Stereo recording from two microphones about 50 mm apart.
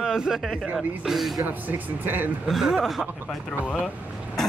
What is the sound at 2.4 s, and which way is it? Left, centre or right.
Speech, centre.